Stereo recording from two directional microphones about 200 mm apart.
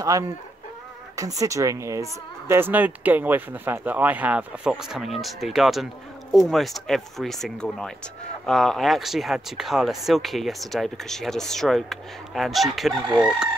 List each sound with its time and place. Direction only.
1.1 s speech: 15° right (ahead or behind); by 12.9 s centre (ahead or behind)
13.0 s speech: 20° right (ahead or behind)